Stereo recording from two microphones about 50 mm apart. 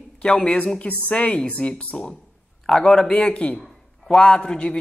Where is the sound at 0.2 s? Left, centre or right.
Centre.